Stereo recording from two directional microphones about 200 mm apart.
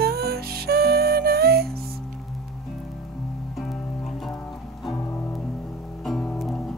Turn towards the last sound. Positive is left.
turn(degrees=0)  # may be behind; listen again after turning